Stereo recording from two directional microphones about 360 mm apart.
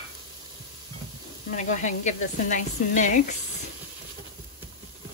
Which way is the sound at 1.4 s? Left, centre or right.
Left.